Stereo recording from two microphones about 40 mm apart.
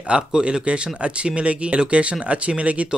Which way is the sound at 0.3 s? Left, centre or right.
Right.